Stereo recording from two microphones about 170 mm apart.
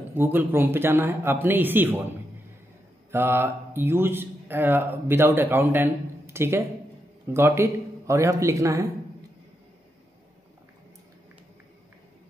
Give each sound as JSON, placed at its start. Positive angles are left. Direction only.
{"t": 0.1, "sound": "speech", "side_deg": -10}
{"t": 3.1, "sound": "speech", "side_deg": -15}